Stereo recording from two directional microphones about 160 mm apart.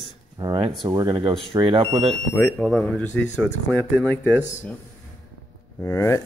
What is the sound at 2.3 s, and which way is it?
Speech, 10° left (ahead or behind).